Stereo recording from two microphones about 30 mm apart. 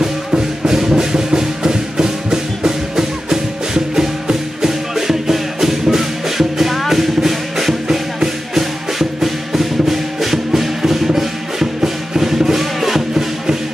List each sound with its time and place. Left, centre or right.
0.0 s music: centre